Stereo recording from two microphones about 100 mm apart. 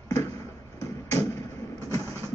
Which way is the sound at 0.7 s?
30° left (ahead or behind).